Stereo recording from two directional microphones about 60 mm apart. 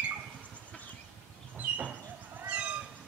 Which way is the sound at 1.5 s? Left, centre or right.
Right.